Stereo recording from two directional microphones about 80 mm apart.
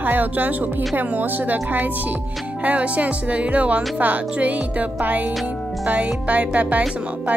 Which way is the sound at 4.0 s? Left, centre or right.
Centre.